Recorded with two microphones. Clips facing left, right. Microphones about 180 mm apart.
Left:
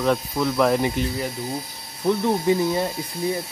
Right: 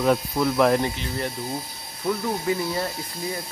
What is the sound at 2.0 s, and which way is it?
Speech, 20° left (ahead or behind).